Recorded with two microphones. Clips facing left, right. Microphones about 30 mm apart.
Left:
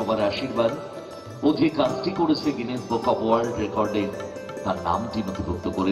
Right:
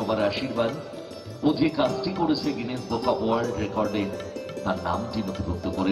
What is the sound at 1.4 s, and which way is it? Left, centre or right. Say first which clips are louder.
Speech: left 2 dB; centre.